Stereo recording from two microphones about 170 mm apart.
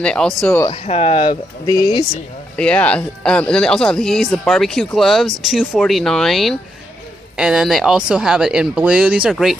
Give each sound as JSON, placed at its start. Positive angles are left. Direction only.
{"t": 0.0, "sound": "speech", "side_deg": 5}
{"t": 0.7, "sound": "speech", "side_deg": 40}
{"t": 1.7, "sound": "speech", "side_deg": 25}
{"t": 2.5, "sound": "speech", "side_deg": 10}